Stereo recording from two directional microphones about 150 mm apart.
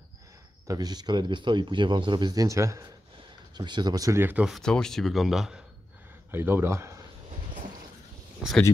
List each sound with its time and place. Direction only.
0.7 s speech: 25° right (ahead or behind)
4.5 s speech: 5° left (ahead or behind)
6.3 s speech: 15° right (ahead or behind)
8.4 s speech: centre (ahead or behind)